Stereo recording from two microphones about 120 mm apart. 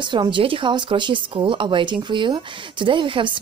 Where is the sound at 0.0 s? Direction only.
40° right (ahead or behind).